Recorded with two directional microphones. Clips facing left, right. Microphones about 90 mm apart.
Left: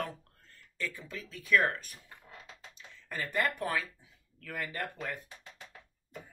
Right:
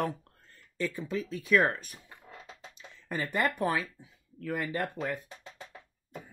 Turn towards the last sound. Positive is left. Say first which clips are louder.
# right 5 dB
turn(degrees=-20)  # may be behind; listen again after turning